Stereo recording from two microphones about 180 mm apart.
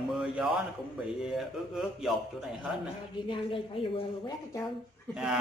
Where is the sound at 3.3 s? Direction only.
30° left (ahead or behind).